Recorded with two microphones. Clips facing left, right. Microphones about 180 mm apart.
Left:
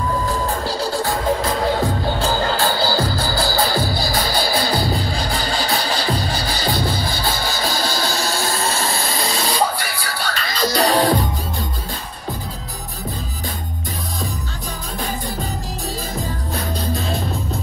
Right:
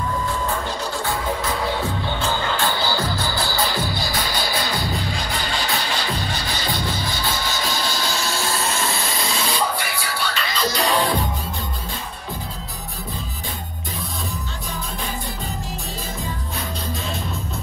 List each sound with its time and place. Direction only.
0.3 s music: 35° left (ahead or behind)
16.5 s music: 35° left (ahead or behind)